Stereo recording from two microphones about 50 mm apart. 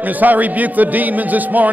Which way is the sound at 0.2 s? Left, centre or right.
Right.